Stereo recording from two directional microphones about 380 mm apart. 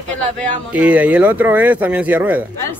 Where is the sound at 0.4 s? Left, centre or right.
Centre.